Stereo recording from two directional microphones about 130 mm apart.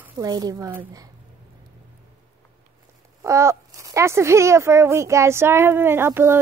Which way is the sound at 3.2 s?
25° right (ahead or behind).